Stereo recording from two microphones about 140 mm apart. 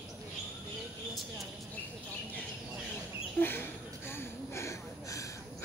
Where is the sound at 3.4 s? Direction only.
15° left (ahead or behind).